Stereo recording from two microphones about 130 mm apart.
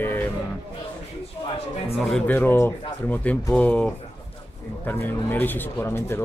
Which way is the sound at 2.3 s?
15° left (ahead or behind).